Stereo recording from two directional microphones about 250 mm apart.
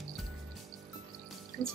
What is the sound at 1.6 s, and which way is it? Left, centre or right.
Speech, centre.